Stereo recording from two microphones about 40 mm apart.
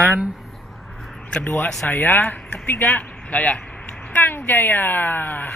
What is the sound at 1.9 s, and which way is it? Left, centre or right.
Speech, left.